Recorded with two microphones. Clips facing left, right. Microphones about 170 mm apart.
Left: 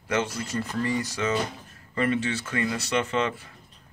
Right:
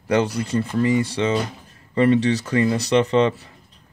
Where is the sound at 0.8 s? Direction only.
20° right (ahead or behind).